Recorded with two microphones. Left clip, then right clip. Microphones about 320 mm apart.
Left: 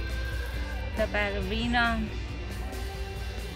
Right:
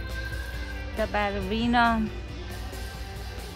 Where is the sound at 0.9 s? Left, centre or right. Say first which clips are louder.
Right 2 dB; centre.